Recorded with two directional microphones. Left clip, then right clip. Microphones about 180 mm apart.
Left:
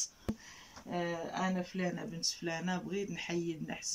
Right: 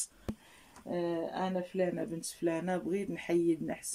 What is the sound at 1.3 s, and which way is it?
Speech, 30° right (ahead or behind).